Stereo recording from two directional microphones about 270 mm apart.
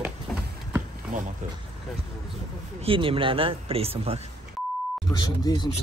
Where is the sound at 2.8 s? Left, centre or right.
Centre.